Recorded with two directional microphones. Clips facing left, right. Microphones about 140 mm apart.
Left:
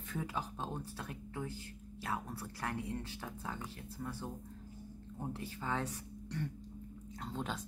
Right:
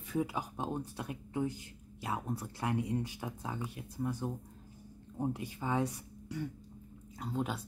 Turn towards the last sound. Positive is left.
turn(degrees=-10)  # may be behind; listen again after turning